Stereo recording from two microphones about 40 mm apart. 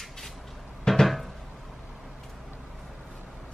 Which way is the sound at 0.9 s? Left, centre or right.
Centre.